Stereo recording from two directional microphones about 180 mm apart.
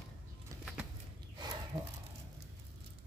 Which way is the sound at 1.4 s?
25° right (ahead or behind).